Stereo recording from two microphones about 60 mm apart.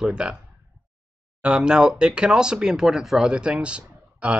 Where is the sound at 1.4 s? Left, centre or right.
Centre.